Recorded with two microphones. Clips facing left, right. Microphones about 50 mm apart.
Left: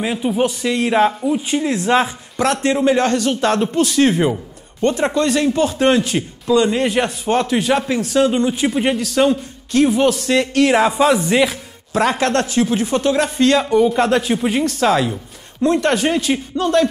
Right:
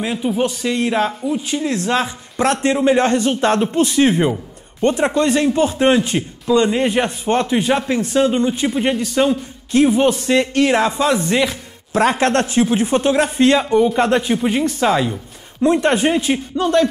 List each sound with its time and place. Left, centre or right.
0.0 s speech: centre
2.5 s a man's voice: centre
9.7 s speech: centre
10.9 s speech: centre
11.9 s a man's voice: right
13.6 s speech: centre
15.6 s speech: centre
16.6 s speech: centre